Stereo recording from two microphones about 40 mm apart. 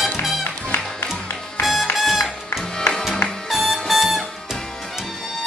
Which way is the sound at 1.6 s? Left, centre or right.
Centre.